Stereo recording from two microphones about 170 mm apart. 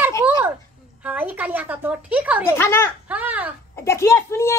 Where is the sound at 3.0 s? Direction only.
10° right (ahead or behind).